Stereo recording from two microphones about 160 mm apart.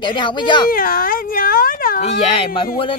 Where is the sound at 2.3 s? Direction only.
35° left (ahead or behind).